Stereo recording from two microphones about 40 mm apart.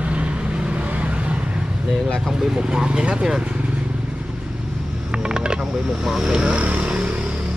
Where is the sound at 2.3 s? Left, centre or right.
Centre.